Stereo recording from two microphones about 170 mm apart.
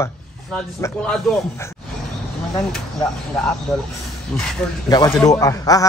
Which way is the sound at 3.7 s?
Centre (ahead or behind).